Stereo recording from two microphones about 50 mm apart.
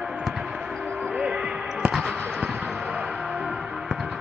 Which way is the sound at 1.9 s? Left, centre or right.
Centre.